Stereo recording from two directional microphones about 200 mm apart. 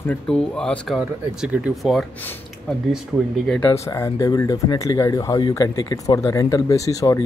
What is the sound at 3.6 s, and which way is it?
Speech, 15° left (ahead or behind).